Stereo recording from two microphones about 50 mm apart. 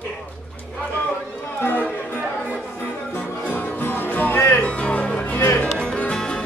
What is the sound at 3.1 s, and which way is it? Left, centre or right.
Music, left.